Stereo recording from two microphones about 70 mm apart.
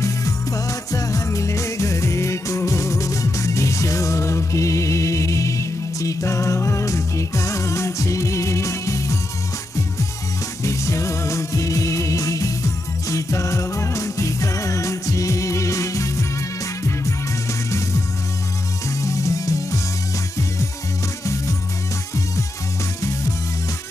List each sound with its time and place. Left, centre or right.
0.0 s music: left
10.6 s music: left
18.9 s music: left
21.2 s music: left